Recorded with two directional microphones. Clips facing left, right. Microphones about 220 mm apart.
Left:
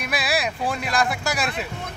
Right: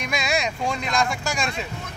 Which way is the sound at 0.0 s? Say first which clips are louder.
Even; 5° left (ahead or behind).